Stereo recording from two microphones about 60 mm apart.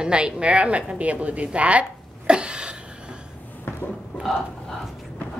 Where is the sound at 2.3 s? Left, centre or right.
Centre.